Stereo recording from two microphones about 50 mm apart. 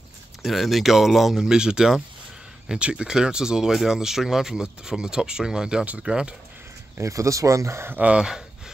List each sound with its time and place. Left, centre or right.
0.4 s speech: centre
1.4 s speech: centre
7.0 s speech: right
8.2 s a sound: centre